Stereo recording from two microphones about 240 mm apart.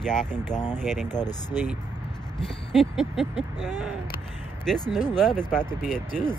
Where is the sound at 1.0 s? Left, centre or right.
Centre.